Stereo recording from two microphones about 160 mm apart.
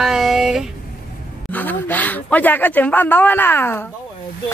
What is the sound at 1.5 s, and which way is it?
Speech, 10° left (ahead or behind).